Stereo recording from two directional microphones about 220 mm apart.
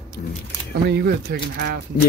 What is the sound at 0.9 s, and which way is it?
Speech, 45° right (ahead or behind).